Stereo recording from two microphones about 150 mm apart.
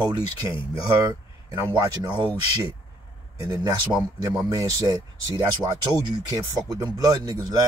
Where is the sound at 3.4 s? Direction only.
25° right (ahead or behind).